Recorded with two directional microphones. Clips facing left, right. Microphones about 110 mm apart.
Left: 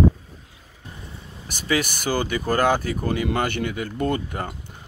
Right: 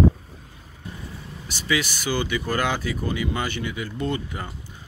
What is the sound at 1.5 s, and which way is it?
Speech, 50° left (ahead or behind).